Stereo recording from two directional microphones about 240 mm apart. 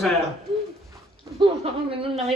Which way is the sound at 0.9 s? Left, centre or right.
Right.